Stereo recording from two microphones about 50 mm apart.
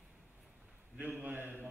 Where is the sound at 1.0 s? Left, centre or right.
Right.